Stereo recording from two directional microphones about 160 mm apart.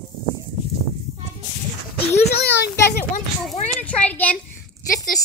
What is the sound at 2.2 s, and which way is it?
Speech, 90° left.